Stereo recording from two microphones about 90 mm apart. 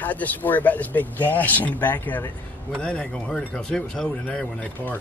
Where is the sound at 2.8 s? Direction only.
10° left (ahead or behind).